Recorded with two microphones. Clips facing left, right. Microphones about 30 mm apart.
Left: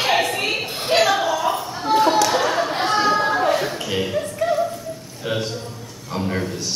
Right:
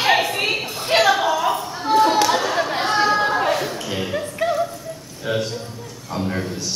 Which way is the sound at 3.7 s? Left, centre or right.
Centre.